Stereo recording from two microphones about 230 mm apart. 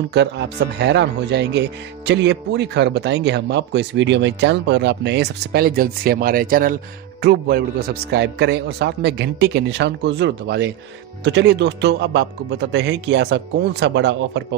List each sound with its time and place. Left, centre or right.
0.1 s speech: right